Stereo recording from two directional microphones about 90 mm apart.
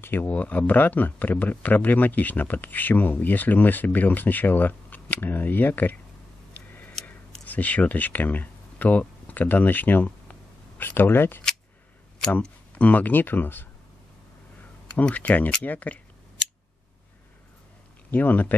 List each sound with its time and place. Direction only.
0.0 s speech: 20° left (ahead or behind)
6.5 s a sound: 20° left (ahead or behind)
7.4 s speech: 15° left (ahead or behind)
15.0 s speech: 15° left (ahead or behind)
18.1 s speech: 20° left (ahead or behind)